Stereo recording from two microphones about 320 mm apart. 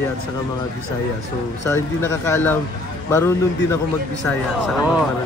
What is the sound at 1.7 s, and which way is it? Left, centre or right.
Speech, centre.